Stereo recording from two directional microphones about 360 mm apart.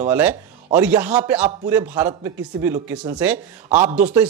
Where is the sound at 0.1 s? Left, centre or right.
Centre.